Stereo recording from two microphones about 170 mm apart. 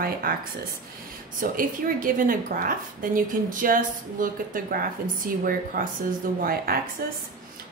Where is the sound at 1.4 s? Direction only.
55° right (ahead or behind).